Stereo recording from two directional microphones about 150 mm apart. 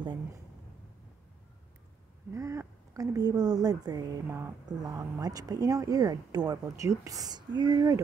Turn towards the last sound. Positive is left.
turn(degrees=-25)  # may be behind; listen again after turning